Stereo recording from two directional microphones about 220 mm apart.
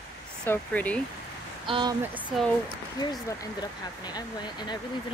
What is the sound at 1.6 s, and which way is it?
Speech, 20° right (ahead or behind).